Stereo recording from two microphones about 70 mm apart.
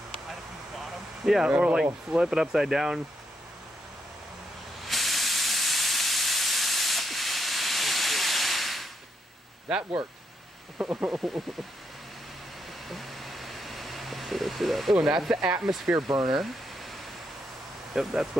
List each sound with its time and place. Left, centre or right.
1.2 s speech: centre
1.5 s speech: centre
4.8 s steam: centre
10.8 s speech: right
11.1 s speech: centre
12.8 s a sound: centre
15.0 s speech: centre
17.9 s speech: centre